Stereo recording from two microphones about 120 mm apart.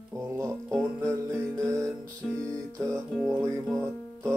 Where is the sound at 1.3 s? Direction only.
10° left (ahead or behind).